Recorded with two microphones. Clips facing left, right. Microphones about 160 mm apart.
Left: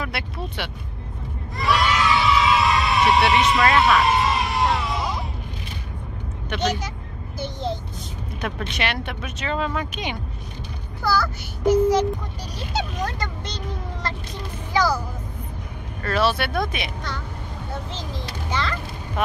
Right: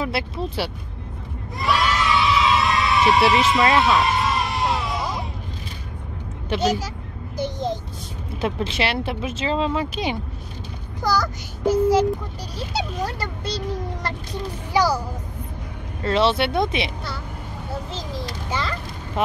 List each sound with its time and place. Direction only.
0.0 s speech: 30° right (ahead or behind)
1.6 s a sound: centre (ahead or behind)
3.8 s music: centre (ahead or behind)
7.3 s a sound: 15° right (ahead or behind)
8.4 s speech: 25° right (ahead or behind)
11.0 s a child's voice: 15° right (ahead or behind)
14.7 s speech: 10° right (ahead or behind)
16.0 s speech: 25° right (ahead or behind)
18.5 s music: 10° right (ahead or behind)
19.2 s speech: 25° right (ahead or behind)